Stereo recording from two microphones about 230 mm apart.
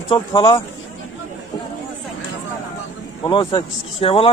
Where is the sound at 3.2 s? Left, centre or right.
Left.